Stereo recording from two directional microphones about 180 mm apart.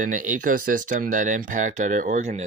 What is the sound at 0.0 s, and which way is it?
Speech, 45° right (ahead or behind).